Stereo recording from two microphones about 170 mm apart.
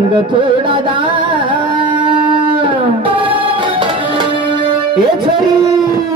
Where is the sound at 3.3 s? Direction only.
30° right (ahead or behind).